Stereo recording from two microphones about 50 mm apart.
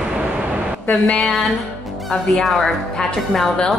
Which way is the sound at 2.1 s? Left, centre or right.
Centre.